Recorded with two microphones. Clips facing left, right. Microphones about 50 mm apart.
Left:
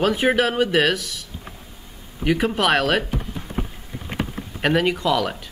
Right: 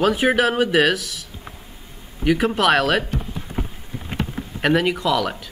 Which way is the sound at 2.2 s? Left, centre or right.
Centre.